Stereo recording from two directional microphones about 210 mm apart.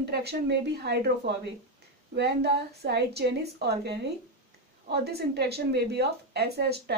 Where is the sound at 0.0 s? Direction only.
50° right (ahead or behind).